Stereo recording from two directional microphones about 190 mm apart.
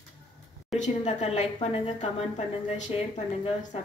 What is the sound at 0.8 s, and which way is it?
A woman's voice, 40° left (ahead or behind).